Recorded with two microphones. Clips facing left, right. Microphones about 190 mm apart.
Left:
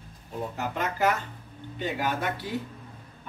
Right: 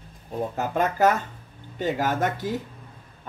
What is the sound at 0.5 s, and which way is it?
Speech, 45° right (ahead or behind).